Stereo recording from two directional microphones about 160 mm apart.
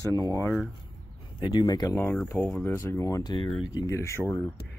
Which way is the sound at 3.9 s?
15° left (ahead or behind).